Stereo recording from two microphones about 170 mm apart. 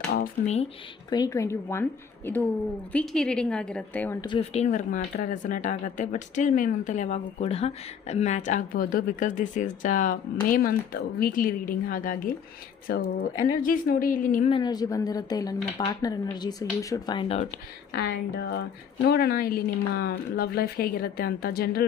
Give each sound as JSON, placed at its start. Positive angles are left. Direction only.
{"t": 1.1, "sound": "a woman's voice", "side_deg": 20}
{"t": 4.4, "sound": "a woman's voice", "side_deg": 40}
{"t": 14.5, "sound": "speech", "side_deg": 25}
{"t": 17.9, "sound": "a woman's voice", "side_deg": 70}